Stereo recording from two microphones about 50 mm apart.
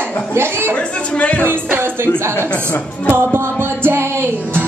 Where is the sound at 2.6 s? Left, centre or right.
Left.